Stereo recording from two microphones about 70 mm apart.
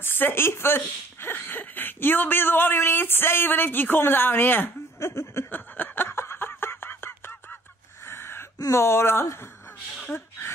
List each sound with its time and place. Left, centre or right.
0.0 s speech: left
5.1 s a sound: left
8.7 s speech: left